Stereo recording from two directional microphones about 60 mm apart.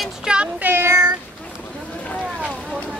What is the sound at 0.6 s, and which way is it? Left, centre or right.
Child singing, right.